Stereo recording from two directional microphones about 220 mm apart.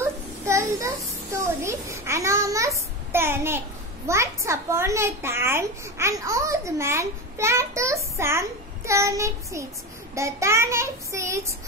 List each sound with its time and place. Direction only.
0.0 s a child's voice: 10° right (ahead or behind)